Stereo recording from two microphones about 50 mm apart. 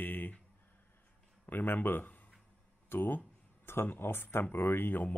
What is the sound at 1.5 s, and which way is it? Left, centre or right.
Speech, left.